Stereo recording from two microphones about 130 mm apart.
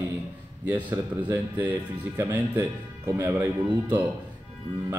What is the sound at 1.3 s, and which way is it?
Speech, 15° right (ahead or behind).